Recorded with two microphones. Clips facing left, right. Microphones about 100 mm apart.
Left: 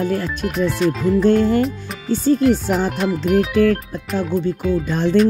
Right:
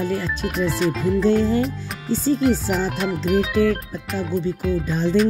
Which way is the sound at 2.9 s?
5° left (ahead or behind).